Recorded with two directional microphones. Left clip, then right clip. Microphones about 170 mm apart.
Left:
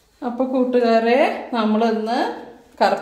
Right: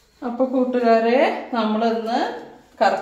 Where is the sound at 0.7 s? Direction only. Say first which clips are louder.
Left 1 dB; 50° left (ahead or behind).